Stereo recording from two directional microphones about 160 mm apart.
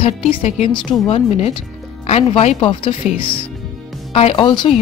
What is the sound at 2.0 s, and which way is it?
Speech, 40° left (ahead or behind).